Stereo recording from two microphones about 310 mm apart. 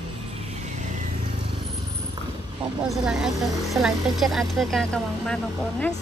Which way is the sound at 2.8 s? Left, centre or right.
Centre.